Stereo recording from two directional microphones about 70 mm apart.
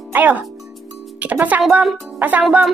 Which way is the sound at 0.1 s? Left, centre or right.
Right.